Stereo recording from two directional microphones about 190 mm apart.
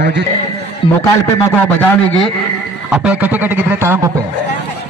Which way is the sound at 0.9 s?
15° left (ahead or behind).